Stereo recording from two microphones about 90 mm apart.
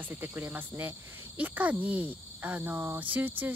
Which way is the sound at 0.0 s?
20° right (ahead or behind).